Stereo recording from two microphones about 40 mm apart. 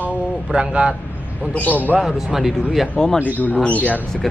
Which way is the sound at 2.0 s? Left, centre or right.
Centre.